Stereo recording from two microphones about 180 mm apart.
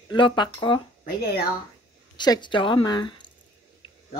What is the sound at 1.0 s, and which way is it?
Speech, 60° left (ahead or behind).